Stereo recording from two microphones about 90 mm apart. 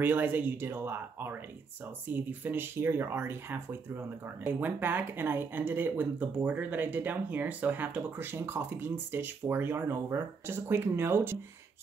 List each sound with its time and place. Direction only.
0.0 s speech: 20° right (ahead or behind)